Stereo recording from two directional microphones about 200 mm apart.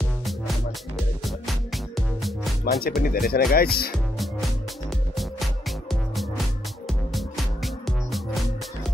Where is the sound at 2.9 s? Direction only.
50° left (ahead or behind).